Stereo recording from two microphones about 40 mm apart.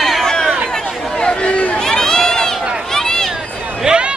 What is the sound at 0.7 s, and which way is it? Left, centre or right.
Chatter, left.